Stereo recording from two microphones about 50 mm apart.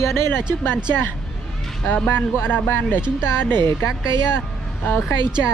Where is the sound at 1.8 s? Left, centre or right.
Left.